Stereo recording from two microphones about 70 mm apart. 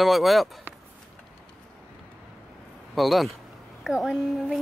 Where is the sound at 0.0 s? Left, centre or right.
Centre.